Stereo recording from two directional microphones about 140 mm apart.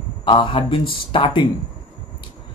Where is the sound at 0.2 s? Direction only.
35° left (ahead or behind).